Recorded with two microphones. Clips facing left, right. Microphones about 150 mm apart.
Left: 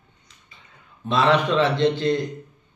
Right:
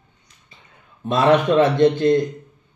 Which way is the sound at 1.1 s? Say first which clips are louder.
Right 4 dB; 50° right (ahead or behind).